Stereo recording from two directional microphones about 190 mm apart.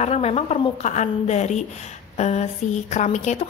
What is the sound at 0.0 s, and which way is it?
A woman's voice, 35° left (ahead or behind).